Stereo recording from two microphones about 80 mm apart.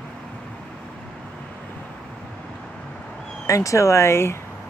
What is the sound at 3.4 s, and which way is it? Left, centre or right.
Speech, left.